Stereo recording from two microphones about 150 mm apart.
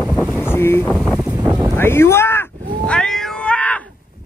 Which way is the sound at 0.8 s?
5° right (ahead or behind).